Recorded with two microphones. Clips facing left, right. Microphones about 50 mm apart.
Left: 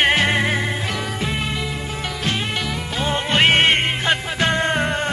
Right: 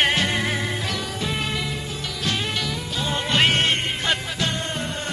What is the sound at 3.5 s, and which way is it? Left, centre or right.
Music, left.